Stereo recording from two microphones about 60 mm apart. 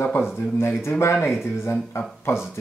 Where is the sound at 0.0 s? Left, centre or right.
Left.